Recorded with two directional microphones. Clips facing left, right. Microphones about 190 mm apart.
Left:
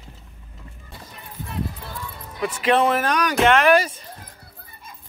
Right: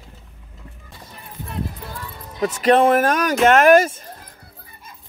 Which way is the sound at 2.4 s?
40° right (ahead or behind).